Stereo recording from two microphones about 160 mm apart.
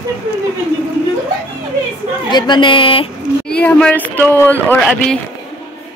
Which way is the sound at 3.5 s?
5° left (ahead or behind).